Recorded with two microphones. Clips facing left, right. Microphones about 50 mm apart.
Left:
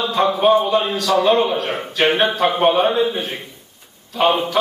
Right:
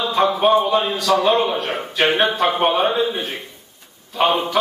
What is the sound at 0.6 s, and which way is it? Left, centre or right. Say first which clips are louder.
A man's voice: even; centre.